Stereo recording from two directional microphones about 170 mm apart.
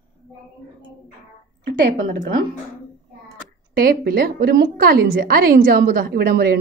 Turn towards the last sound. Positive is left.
turn(degrees=-65)  # may be behind; listen again after turning